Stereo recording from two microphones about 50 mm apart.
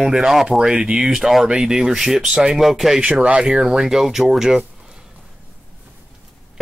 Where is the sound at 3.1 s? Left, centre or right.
Right.